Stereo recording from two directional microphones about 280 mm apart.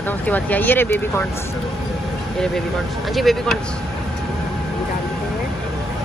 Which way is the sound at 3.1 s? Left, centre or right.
Centre.